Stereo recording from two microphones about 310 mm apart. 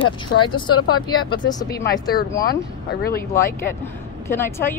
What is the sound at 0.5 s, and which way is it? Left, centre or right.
Speech, centre.